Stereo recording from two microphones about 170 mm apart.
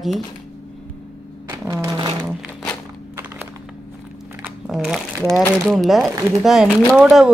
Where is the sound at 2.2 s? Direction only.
Centre (ahead or behind).